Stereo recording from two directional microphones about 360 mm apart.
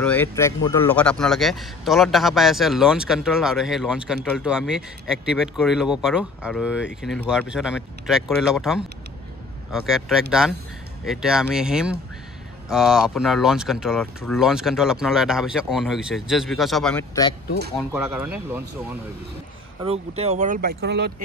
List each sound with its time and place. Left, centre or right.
0.0 s a man's voice: centre
17.9 s a man's voice: centre
19.8 s speech: centre